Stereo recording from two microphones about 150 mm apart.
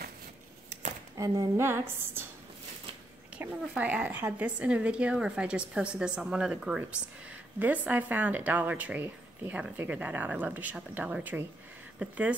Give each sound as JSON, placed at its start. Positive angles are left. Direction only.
{"t": 1.1, "sound": "a woman's voice", "side_deg": -25}
{"t": 3.3, "sound": "speech", "side_deg": -10}